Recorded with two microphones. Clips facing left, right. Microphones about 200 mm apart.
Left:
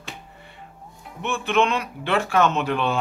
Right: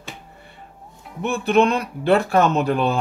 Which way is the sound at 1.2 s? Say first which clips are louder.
Right 4 dB; 40° right (ahead or behind).